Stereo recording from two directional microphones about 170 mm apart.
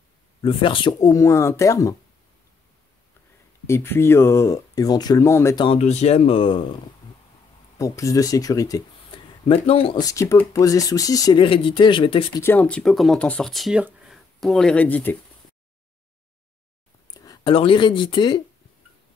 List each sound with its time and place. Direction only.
0.4 s speech: 30° left (ahead or behind)
3.6 s speech: 15° left (ahead or behind)
5.7 s speech: 40° left (ahead or behind)
7.7 s speech: 20° left (ahead or behind)
12.4 s speech: 10° left (ahead or behind)
17.1 s speech: 20° left (ahead or behind)